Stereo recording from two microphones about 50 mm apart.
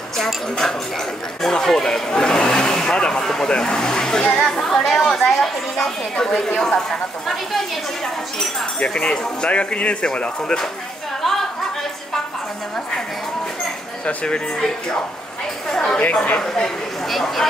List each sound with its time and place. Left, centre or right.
0.2 s speech: centre
8.7 s speech: left
11.2 s a sound: centre
14.0 s speech: centre
15.7 s a sound: centre
16.3 s speech: centre